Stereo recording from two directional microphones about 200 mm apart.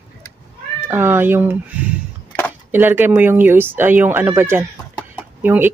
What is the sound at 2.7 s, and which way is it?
Speech, 10° right (ahead or behind).